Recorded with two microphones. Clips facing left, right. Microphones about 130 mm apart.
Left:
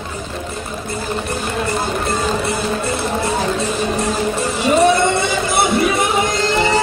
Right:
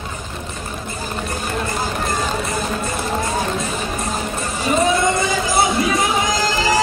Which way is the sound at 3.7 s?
75° left (ahead or behind).